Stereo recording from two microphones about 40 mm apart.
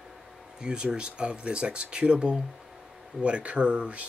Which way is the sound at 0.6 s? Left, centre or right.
Right.